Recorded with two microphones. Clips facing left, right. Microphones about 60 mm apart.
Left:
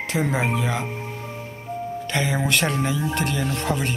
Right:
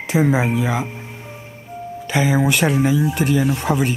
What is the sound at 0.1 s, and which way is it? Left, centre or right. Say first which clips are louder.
Speech: right 6 dB; centre.